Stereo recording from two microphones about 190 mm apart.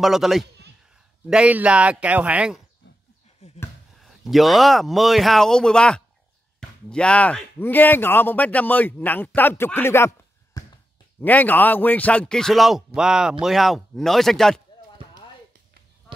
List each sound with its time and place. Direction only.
0.0 s speech: centre (ahead or behind)
3.4 s a sound: 35° left (ahead or behind)
4.0 s a man's voice: centre (ahead or behind)